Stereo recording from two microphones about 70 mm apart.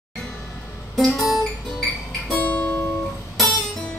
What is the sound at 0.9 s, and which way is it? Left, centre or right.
Guitar, centre.